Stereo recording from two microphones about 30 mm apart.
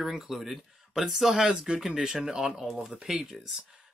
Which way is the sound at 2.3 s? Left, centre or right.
Centre.